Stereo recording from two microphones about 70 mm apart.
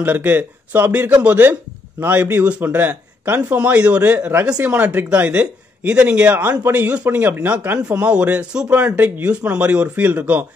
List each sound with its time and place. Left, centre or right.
0.0 s speech: right